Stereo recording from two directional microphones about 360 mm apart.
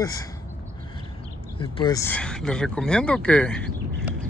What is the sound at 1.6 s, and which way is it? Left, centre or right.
Speech, centre.